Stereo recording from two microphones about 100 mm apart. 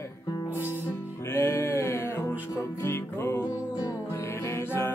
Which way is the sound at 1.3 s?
25° left (ahead or behind).